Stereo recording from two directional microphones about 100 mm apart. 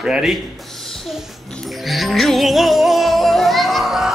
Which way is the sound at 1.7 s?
Centre (ahead or behind).